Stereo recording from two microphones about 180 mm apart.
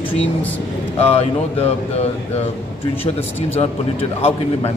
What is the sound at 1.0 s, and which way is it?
Speech, 35° left (ahead or behind).